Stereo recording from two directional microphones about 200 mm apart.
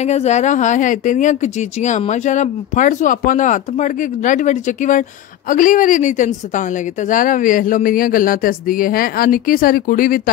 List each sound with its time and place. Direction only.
0.0 s a woman's voice: 35° left (ahead or behind)